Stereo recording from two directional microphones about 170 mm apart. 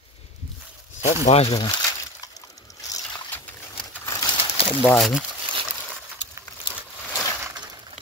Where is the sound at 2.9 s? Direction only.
10° left (ahead or behind).